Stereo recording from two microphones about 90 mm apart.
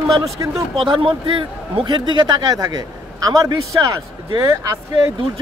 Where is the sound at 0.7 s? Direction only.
75° right (ahead or behind); by 4.6 s 40° right (ahead or behind).